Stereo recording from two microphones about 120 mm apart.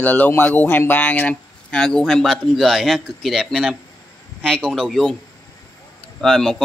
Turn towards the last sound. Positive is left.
turn(degrees=0)  # may be behind; listen again after turning